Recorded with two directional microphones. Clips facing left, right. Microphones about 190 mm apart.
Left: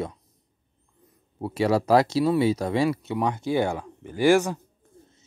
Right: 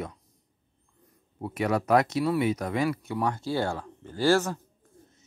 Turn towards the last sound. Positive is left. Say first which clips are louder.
# left 4 dB
turn(degrees=15)  # may be behind; listen again after turning